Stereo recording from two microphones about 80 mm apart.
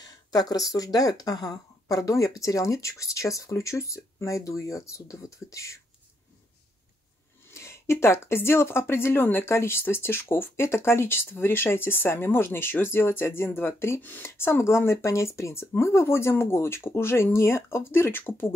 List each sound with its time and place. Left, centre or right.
0.0 s speech: left
7.5 s speech: left